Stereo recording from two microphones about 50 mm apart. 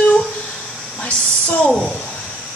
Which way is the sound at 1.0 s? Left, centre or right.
Left.